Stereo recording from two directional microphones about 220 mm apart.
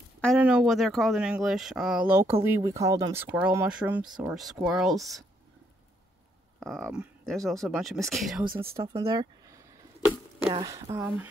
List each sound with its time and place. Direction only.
0.2 s speech: centre (ahead or behind)
6.6 s speech: centre (ahead or behind)
8.5 s speech: 15° right (ahead or behind)
11.0 s speech: 5° right (ahead or behind)